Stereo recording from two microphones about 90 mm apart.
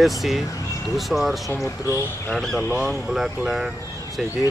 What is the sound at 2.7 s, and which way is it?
Speech, 5° right (ahead or behind).